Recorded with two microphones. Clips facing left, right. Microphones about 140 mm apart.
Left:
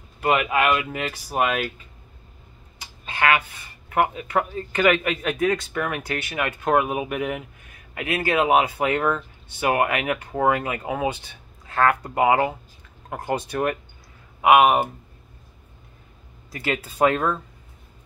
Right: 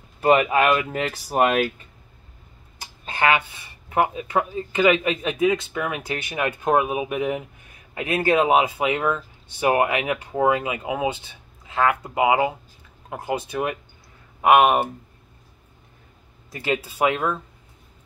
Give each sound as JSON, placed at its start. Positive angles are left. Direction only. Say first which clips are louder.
{"t": 0.2, "sound": "speech", "louder": "right 3 dB", "side_deg": -35}
{"t": 3.1, "sound": "speech", "louder": "right 1 dB", "side_deg": -30}
{"t": 10.1, "sound": "speech", "louder": "right 1 dB", "side_deg": -10}
{"t": 14.4, "sound": "speech", "louder": "even", "side_deg": 0}
{"t": 16.5, "sound": "speech", "louder": "even", "side_deg": -15}